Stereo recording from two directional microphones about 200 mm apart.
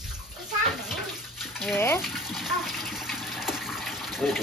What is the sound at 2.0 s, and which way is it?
Speech, centre (ahead or behind).